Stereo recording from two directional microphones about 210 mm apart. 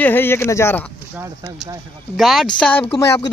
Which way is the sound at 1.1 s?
15° right (ahead or behind).